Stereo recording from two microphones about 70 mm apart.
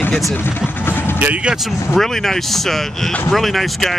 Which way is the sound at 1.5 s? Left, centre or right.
Centre.